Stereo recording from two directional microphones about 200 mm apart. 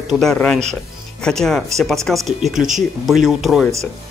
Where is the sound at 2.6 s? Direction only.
40° right (ahead or behind).